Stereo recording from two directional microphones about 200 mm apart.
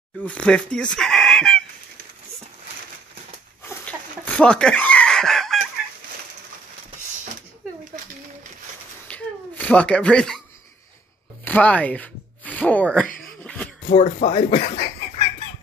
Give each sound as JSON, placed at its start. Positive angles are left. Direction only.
{"t": 0.2, "sound": "speech", "side_deg": 5}
{"t": 3.6, "sound": "chicken", "side_deg": 10}
{"t": 9.0, "sound": "a sound", "side_deg": 5}
{"t": 11.4, "sound": "speech", "side_deg": 5}
{"t": 13.4, "sound": "a sound", "side_deg": 5}
{"t": 13.8, "sound": "speech", "side_deg": 35}